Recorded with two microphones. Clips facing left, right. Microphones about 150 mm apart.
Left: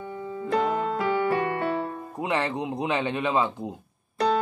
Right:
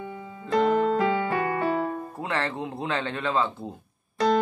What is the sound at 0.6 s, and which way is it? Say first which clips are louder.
Music: right 4 dB; 10° left (ahead or behind).